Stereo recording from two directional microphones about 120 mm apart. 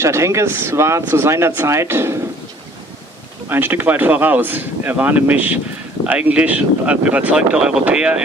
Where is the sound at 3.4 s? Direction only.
15° right (ahead or behind).